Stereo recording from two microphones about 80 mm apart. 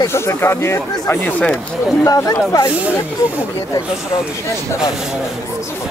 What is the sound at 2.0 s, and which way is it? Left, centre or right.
Speech, left.